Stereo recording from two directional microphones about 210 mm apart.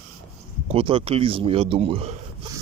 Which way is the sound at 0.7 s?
25° right (ahead or behind).